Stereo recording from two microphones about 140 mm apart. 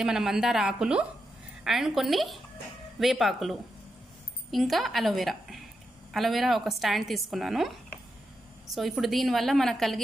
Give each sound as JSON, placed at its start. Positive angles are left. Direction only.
{"t": 0.0, "sound": "speech", "side_deg": -5}
{"t": 8.7, "sound": "speech", "side_deg": 0}